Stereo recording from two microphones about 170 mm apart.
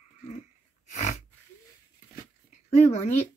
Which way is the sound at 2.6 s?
40° left (ahead or behind).